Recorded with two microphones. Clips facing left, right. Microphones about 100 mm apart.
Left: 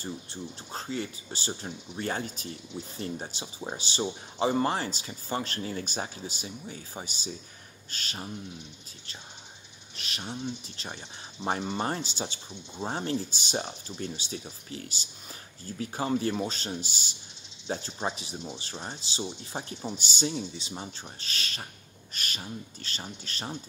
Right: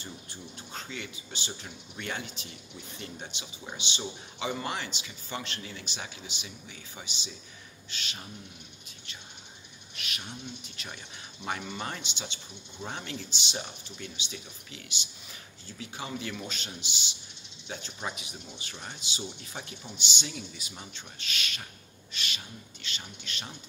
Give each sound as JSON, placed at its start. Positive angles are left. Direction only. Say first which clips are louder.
{"t": 0.0, "sound": "speech", "louder": "left 6 dB", "side_deg": 35}
{"t": 9.9, "sound": "speech", "louder": "left 4 dB", "side_deg": 30}